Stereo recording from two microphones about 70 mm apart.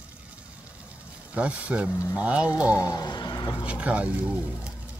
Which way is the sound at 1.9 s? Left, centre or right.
Left.